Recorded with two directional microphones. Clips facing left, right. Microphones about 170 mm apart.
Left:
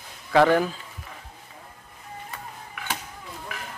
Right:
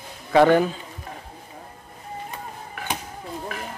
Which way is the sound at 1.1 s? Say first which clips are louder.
Right 7 dB; 40° right (ahead or behind).